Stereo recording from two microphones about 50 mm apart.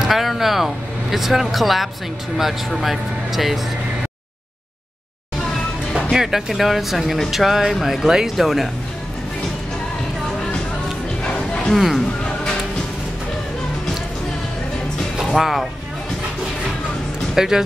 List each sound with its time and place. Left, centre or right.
0.0 s speech: centre
6.0 s speech: centre
11.3 s bow-wow: left
11.7 s speech: centre
15.3 s speech: centre
17.4 s speech: centre